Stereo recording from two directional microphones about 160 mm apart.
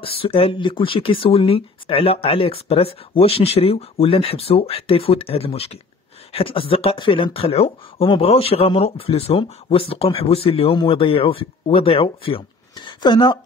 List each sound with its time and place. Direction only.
0.0 s speech: 35° left (ahead or behind)